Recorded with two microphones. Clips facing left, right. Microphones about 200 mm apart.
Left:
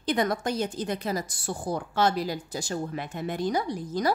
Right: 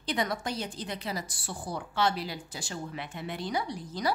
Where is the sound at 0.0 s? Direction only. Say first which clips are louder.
Left 5 dB; 50° left (ahead or behind).